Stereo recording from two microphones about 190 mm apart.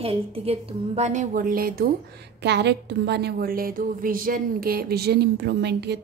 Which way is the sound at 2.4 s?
65° right (ahead or behind).